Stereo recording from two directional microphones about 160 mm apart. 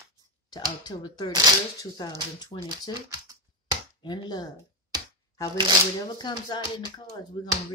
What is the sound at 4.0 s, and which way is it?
Speech, 25° left (ahead or behind).